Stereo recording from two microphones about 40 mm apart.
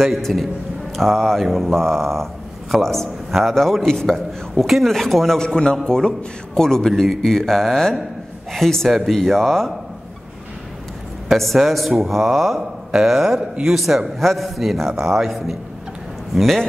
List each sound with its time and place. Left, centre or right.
0.3 s a man's voice: centre
1.4 s a man's voice: centre
5.4 s a man's voice: centre
11.2 s a sound: centre
12.0 s a man's voice: centre
12.5 s a man's voice: centre